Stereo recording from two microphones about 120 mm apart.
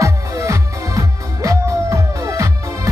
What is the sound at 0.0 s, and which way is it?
Music, 25° right (ahead or behind).